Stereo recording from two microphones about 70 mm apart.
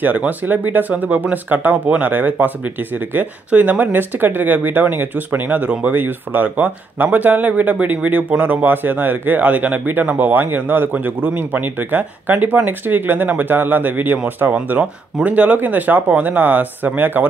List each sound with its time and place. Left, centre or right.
0.0 s speech: right